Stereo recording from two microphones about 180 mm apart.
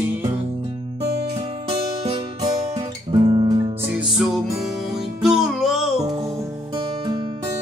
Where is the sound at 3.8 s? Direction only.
5° right (ahead or behind).